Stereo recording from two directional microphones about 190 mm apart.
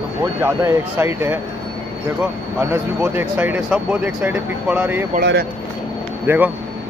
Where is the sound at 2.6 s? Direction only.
10° right (ahead or behind).